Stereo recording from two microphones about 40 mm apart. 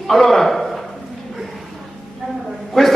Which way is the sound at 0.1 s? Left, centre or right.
Centre.